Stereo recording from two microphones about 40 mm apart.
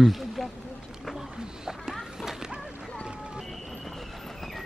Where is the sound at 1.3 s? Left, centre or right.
Centre.